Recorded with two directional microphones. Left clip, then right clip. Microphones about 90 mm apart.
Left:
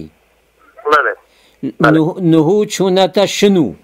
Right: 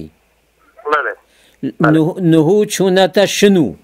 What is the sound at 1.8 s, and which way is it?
Speech, 35° left (ahead or behind).